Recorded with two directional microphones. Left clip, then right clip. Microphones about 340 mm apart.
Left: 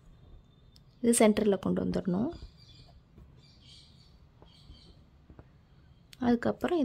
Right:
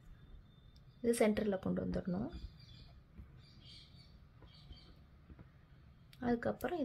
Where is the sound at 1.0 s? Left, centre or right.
Left.